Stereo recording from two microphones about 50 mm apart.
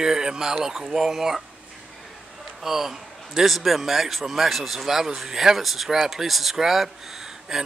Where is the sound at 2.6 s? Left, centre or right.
Centre.